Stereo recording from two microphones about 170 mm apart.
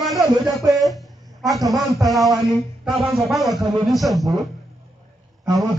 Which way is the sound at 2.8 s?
Centre (ahead or behind).